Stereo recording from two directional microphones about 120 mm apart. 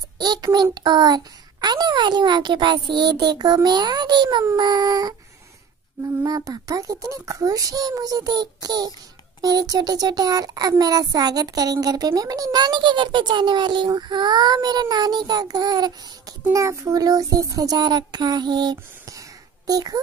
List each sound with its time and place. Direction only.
0.2 s a child's voice: 35° right (ahead or behind)
6.2 s a child's voice: 30° right (ahead or behind)